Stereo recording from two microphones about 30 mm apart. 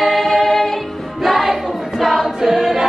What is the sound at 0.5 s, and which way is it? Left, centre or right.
Music, centre.